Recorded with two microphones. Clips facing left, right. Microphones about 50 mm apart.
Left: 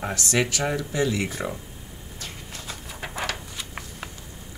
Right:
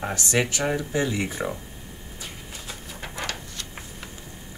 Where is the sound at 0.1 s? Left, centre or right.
Right.